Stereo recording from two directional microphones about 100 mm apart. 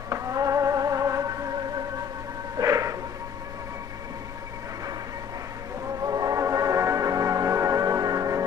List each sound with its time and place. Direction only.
0.1 s music: 35° right (ahead or behind)
2.5 s a sound: 35° right (ahead or behind)
6.0 s music: 35° right (ahead or behind)